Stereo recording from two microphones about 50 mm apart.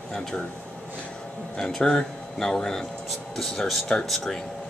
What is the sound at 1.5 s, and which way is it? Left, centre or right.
Speech, centre.